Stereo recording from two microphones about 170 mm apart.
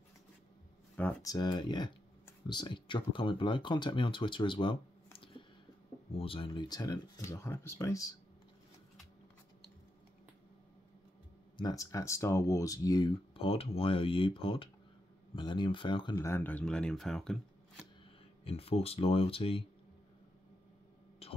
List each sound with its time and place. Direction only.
1.2 s speech: 25° left (ahead or behind)
11.5 s speech: 20° left (ahead or behind)
16.2 s speech: 15° left (ahead or behind)
18.4 s speech: 35° left (ahead or behind)
21.2 s a sound: 35° left (ahead or behind)